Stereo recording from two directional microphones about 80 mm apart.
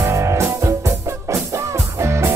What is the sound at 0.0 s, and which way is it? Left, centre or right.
Music, right.